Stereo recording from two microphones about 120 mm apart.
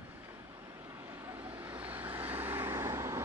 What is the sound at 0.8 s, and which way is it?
Vehicle, 15° right (ahead or behind).